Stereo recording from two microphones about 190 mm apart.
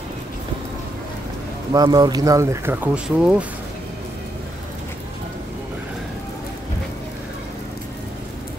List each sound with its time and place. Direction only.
1.7 s speech: 20° right (ahead or behind); by 3.4 s 5° right (ahead or behind)